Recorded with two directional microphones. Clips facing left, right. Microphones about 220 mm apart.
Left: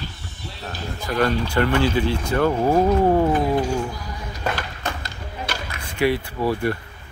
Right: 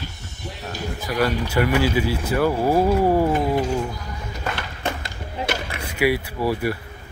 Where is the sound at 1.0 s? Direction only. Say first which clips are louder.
Left 1 dB; 10° right (ahead or behind).